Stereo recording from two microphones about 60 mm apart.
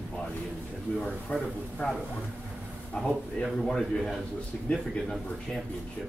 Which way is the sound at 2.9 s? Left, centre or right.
Centre.